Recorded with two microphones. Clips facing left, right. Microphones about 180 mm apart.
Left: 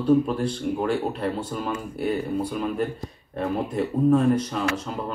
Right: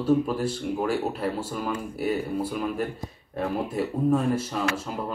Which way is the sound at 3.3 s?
5° right (ahead or behind).